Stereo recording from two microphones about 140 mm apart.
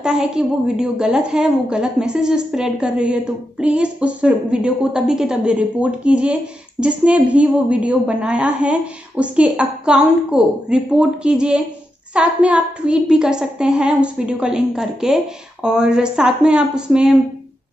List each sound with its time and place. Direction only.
0.0 s a woman's voice: 5° right (ahead or behind)